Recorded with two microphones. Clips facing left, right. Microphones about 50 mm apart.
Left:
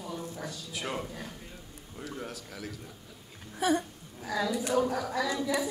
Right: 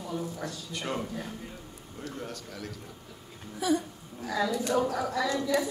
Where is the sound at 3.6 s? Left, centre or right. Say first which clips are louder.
Even; left.